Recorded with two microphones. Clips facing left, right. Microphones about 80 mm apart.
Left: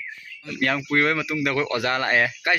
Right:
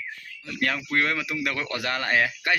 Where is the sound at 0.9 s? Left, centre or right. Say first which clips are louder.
Left 4 dB; centre.